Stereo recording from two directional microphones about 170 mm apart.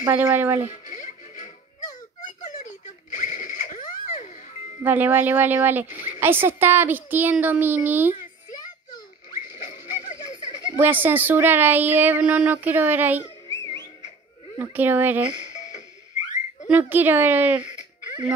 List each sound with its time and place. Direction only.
0.0 s speech: 15° right (ahead or behind)
0.7 s music: 45° left (ahead or behind)
2.2 s a sound: 45° left (ahead or behind)
4.8 s speech: 10° right (ahead or behind)
5.9 s speech: 50° left (ahead or behind)
6.1 s speech: 15° right (ahead or behind)
8.5 s a sound: 25° left (ahead or behind)
10.8 s speech: 10° right (ahead or behind)
14.6 s speech: 10° right (ahead or behind)
15.3 s a sound: 45° left (ahead or behind)
16.6 s speech: 10° right (ahead or behind)
17.6 s a sound: 45° left (ahead or behind)